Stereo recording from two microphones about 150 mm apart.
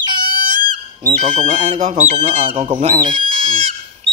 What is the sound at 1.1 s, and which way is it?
Speech, 55° right (ahead or behind).